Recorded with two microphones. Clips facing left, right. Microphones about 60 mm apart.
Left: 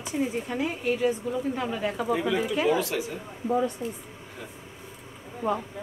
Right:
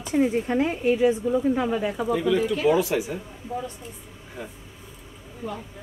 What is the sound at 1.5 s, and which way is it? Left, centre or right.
Speech, centre.